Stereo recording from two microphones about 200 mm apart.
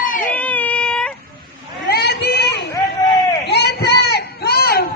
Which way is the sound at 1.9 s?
50° left (ahead or behind).